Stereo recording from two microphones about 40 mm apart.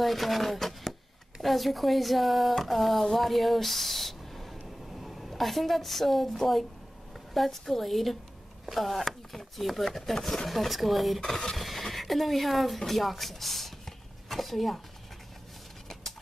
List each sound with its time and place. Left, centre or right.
0.0 s speech: centre
11.1 s speech: centre
11.5 s a sound: centre